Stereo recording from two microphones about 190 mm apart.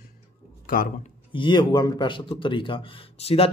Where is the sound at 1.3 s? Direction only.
25° left (ahead or behind).